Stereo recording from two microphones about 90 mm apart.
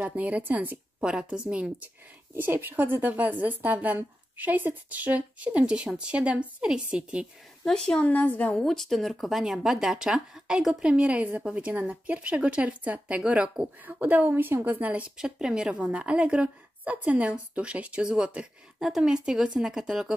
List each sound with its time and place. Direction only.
0.0 s speech: 15° right (ahead or behind)
2.3 s speech: 20° right (ahead or behind)
7.6 s a woman's voice: 5° left (ahead or behind)
8.1 s a woman's voice: 20° left (ahead or behind)
8.6 s speech: 5° left (ahead or behind)